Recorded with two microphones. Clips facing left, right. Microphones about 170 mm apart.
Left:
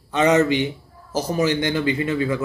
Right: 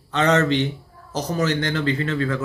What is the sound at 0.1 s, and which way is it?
Speech, 10° left (ahead or behind).